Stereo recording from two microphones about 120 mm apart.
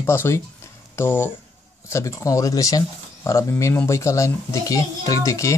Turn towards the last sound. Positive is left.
turn(degrees=25)  # may be behind; listen again after turning